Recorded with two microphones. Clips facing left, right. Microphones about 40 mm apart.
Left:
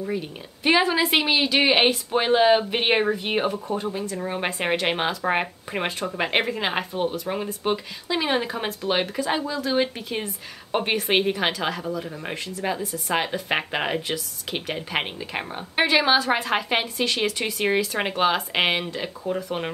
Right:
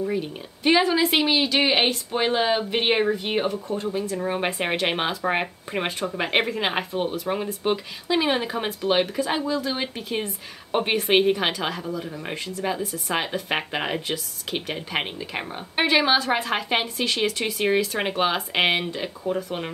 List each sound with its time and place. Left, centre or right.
0.1 s a woman's voice: centre
4.0 s speech: centre